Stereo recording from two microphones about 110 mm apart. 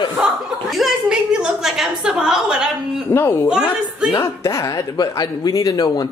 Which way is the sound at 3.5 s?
5° right (ahead or behind).